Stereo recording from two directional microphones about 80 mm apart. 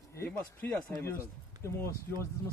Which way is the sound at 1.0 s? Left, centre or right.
Left.